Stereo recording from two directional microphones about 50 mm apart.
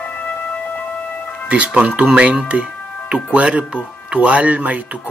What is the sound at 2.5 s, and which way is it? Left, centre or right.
Music, right.